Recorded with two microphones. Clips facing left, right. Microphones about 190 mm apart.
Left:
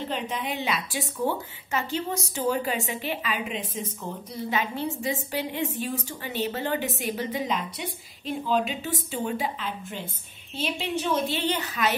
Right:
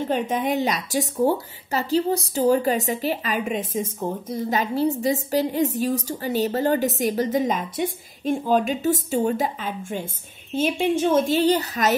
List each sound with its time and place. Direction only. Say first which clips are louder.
0.0 s a woman's voice: right 8 dB; 45° right (ahead or behind)